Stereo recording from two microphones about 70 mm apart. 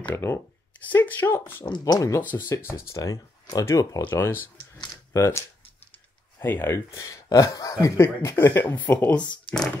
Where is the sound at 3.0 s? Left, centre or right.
Left.